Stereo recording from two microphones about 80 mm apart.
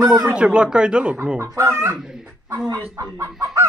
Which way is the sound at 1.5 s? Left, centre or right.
Right.